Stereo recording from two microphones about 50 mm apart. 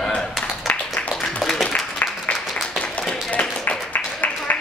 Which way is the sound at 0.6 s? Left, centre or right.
Left.